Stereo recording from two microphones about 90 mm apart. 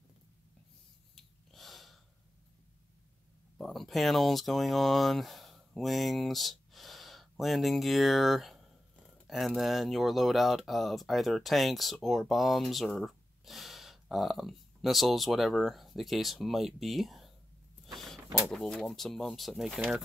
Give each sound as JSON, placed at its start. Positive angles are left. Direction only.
{"t": 1.1, "sound": "breathing", "side_deg": 0}
{"t": 3.5, "sound": "speech", "side_deg": 0}